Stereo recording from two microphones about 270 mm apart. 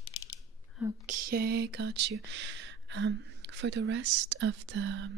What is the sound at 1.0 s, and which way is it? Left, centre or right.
Speech, right.